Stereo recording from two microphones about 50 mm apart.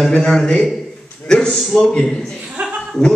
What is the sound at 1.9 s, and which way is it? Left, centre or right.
Speech, centre.